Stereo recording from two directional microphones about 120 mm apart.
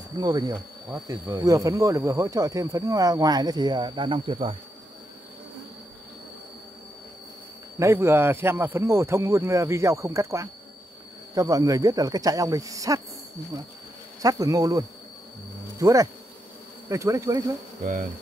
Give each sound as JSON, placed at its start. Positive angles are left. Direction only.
{"t": 0.2, "sound": "speech", "side_deg": -35}
{"t": 7.8, "sound": "speech", "side_deg": -20}
{"t": 14.2, "sound": "speech", "side_deg": -30}